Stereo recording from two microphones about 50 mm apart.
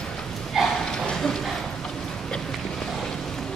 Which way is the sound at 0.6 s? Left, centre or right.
Centre.